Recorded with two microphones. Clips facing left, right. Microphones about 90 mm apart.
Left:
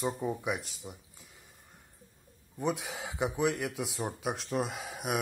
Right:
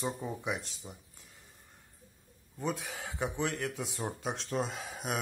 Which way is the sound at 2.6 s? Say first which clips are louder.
Left 3 dB; 15° left (ahead or behind).